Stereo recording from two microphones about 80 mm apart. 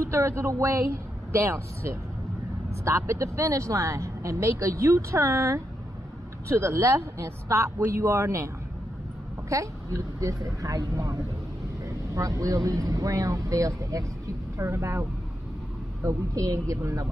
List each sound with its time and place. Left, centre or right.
0.0 s speech: right
9.5 s speech: right